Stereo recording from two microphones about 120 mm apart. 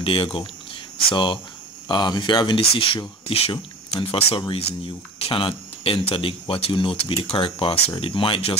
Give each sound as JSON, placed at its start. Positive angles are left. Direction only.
{"t": 0.0, "sound": "speech", "side_deg": 45}